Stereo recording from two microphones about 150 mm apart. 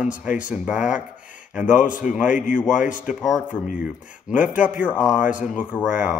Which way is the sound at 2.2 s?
60° left (ahead or behind).